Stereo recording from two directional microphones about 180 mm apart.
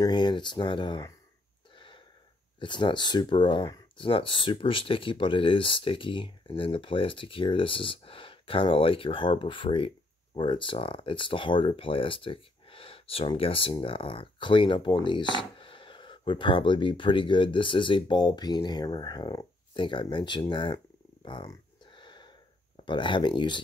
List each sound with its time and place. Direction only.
0.0 s speech: 25° left (ahead or behind)
1.8 s gasp: 25° left (ahead or behind)
2.6 s speech: 25° left (ahead or behind)